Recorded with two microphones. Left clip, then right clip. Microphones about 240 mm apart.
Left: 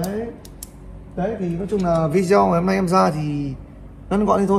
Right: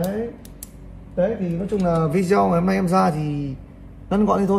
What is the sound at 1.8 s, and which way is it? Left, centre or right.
Speech, centre.